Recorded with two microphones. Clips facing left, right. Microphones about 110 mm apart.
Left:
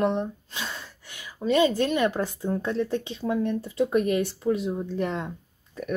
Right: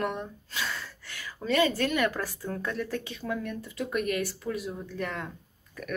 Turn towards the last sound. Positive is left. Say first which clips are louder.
# left 6 dB
turn(degrees=25)  # may be behind; listen again after turning